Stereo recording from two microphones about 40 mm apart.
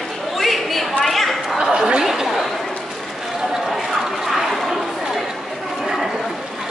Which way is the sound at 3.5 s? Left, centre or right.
Centre.